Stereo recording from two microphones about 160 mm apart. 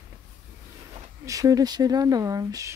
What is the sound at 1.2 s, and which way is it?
Speech, 20° right (ahead or behind).